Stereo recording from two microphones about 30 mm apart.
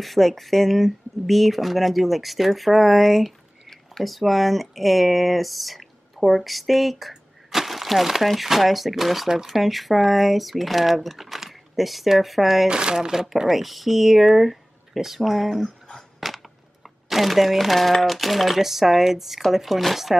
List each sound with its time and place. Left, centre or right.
0.0 s speech: centre
12.6 s speech: right
13.5 s speech: centre
16.2 s a sound: centre
16.8 s speech: centre